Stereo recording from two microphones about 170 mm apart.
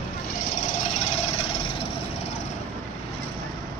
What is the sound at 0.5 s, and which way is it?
Vehicle, 45° left (ahead or behind).